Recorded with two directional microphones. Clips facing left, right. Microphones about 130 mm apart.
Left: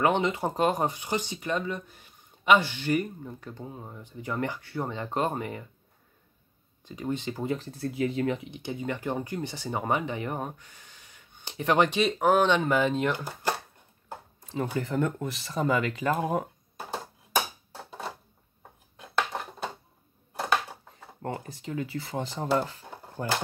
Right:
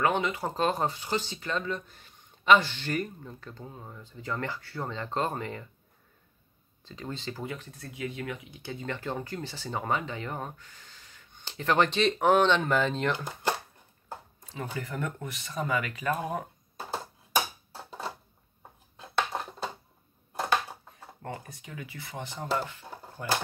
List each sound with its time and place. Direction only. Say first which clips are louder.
0.0 s speech: left 3 dB; 20° left (ahead or behind)
6.8 s speech: left 7 dB; 15° left (ahead or behind)
7.4 s speech: left 8 dB; 35° left (ahead or behind); by 13.3 s 10° left (ahead or behind)
14.5 s speech: left 7 dB; 25° left (ahead or behind)
21.2 s speech: left 5 dB; 30° left (ahead or behind)